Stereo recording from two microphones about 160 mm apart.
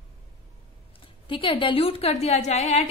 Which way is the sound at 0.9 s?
35° left (ahead or behind).